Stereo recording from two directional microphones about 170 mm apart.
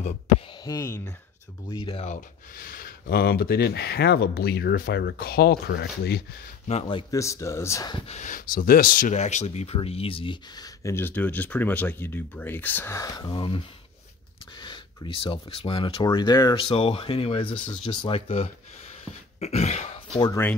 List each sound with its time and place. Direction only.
0.7 s speech: 20° left (ahead or behind)
1.7 s speech: 30° left (ahead or behind)
2.5 s speech: 55° left (ahead or behind)
6.7 s speech: 30° left (ahead or behind)
7.9 s speech: 40° left (ahead or behind)
10.8 s speech: 15° left (ahead or behind); by 19.9 s 40° left (ahead or behind)
20.2 s speech: 20° left (ahead or behind)